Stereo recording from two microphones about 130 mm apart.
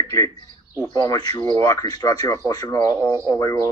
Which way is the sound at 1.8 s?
30° left (ahead or behind).